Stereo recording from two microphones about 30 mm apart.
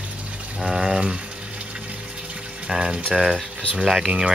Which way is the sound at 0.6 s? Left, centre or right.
Centre.